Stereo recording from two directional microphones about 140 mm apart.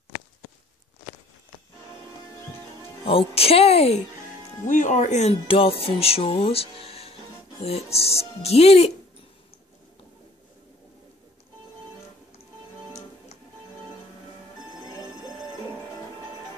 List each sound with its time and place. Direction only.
3.1 s speech: 45° left (ahead or behind)
4.6 s speech: 65° left (ahead or behind); by 8.9 s 45° left (ahead or behind)